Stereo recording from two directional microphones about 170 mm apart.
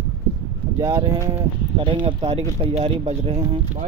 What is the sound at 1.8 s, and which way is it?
Speech, 30° right (ahead or behind).